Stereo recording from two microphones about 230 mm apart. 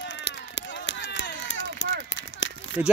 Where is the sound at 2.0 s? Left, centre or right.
Left.